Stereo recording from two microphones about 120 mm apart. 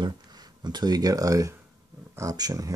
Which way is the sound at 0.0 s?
35° right (ahead or behind).